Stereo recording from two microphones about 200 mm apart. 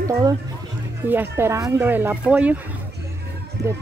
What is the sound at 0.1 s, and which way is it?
A woman's voice, 15° right (ahead or behind).